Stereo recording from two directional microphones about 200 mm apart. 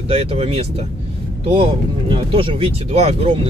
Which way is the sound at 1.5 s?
25° right (ahead or behind).